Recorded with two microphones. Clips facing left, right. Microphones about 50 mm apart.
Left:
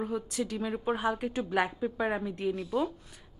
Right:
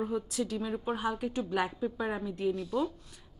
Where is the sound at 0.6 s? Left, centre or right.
Left.